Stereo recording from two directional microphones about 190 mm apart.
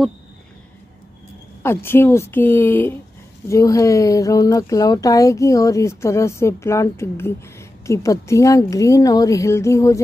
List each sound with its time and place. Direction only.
1.6 s speech: 10° left (ahead or behind)